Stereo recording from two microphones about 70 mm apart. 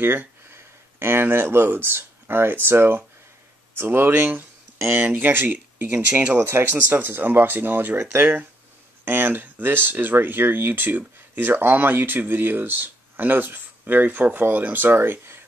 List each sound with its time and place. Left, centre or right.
0.0 s speech: right
6.3 s speech: right